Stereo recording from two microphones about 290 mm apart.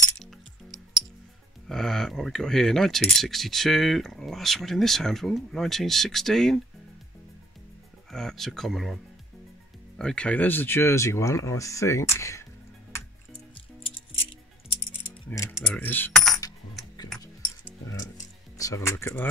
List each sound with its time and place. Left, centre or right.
1.7 s speech: centre
8.1 s speech: centre
15.2 s speech: centre
15.5 s coin: centre
17.8 s music: centre